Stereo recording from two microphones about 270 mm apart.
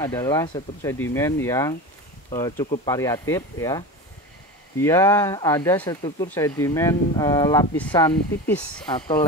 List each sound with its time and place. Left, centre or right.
0.0 s speech: centre
8.8 s speech: centre